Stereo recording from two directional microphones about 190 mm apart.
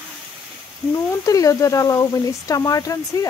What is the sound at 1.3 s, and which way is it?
Speech, 15° left (ahead or behind).